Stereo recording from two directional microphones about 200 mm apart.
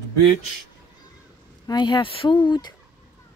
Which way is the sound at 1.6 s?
20° left (ahead or behind).